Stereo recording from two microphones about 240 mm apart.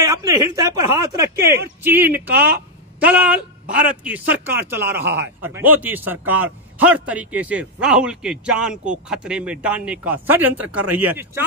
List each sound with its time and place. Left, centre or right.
0.0 s speech: centre
2.3 s a sound: right
3.1 s a man's voice: centre
5.0 s a man's voice: right
5.4 s a man's voice: centre